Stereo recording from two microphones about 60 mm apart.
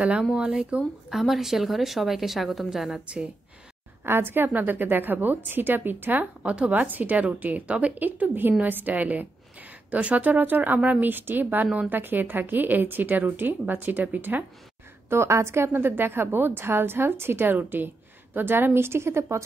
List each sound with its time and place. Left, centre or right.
0.2 s speech: centre
4.0 s a woman's voice: right
15.0 s a woman's voice: right